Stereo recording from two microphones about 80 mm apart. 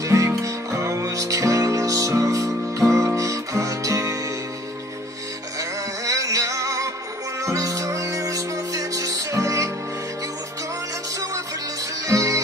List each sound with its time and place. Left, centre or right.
0.0 s music: right
5.6 s music: right
12.1 s music: right